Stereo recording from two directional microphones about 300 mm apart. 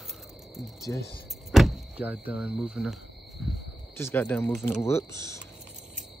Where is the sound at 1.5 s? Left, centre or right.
Centre.